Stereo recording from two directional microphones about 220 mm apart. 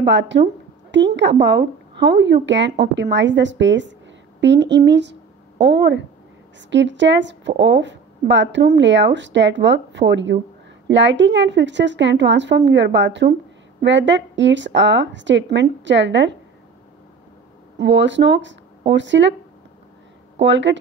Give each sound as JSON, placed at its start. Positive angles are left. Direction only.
{"t": 0.0, "sound": "a woman's voice", "side_deg": -55}
{"t": 17.7, "sound": "speech", "side_deg": -55}
{"t": 20.4, "sound": "a woman's voice", "side_deg": -55}